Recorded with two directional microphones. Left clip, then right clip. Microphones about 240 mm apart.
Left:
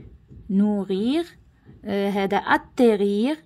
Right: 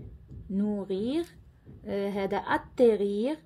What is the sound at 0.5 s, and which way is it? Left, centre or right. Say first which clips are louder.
A woman's voice: left 7 dB; left.